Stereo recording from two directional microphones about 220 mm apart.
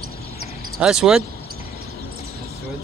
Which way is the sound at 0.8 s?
5° right (ahead or behind).